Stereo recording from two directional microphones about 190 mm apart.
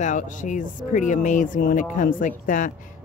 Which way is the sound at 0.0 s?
40° left (ahead or behind).